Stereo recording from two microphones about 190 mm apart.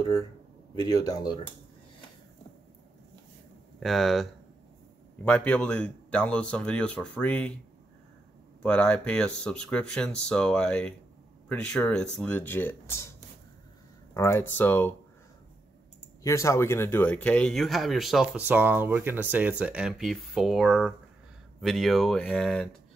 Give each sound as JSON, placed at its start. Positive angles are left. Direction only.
{"t": 0.8, "sound": "speech", "side_deg": 20}
{"t": 3.8, "sound": "speech", "side_deg": 0}
{"t": 8.6, "sound": "speech", "side_deg": 5}
{"t": 14.1, "sound": "speech", "side_deg": 15}
{"t": 16.2, "sound": "speech", "side_deg": 15}